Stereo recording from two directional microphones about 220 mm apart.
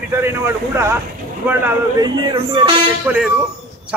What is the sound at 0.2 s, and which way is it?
A man's voice, 10° right (ahead or behind).